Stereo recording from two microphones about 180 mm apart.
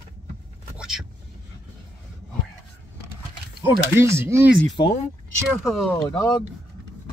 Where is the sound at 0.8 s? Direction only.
Centre (ahead or behind).